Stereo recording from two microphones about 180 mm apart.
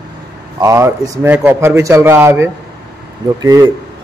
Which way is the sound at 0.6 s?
15° right (ahead or behind).